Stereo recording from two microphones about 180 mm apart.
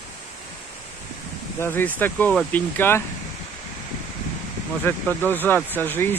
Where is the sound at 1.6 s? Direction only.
10° left (ahead or behind).